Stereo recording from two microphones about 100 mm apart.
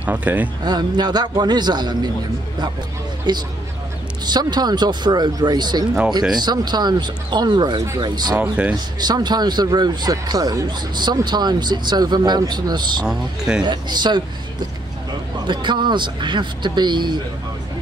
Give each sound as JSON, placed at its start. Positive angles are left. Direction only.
{"t": 0.0, "sound": "speech", "side_deg": -15}
{"t": 0.7, "sound": "a man's voice", "side_deg": -45}
{"t": 3.3, "sound": "a man's voice", "side_deg": -45}
{"t": 8.4, "sound": "speech", "side_deg": -15}
{"t": 9.0, "sound": "a man's voice", "side_deg": -45}
{"t": 13.0, "sound": "speech", "side_deg": -5}
{"t": 13.7, "sound": "a man's voice", "side_deg": -45}
{"t": 15.4, "sound": "a man's voice", "side_deg": -50}